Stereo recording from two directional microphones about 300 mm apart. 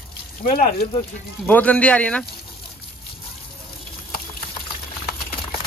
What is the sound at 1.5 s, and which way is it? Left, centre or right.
Speech, centre.